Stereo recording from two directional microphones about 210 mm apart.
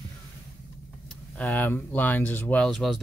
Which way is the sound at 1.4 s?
5° left (ahead or behind).